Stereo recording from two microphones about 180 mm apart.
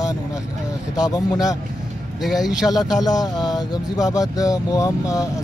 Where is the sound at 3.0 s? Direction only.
20° left (ahead or behind).